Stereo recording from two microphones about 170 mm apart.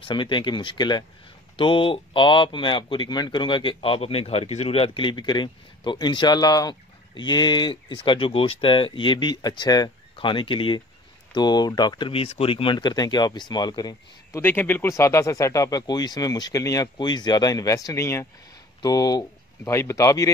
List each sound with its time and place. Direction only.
0.1 s speech: 25° left (ahead or behind)
14.4 s speech: 10° left (ahead or behind)